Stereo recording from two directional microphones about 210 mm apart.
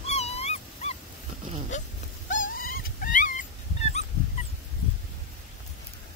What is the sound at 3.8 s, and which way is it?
Fowl, 30° left (ahead or behind).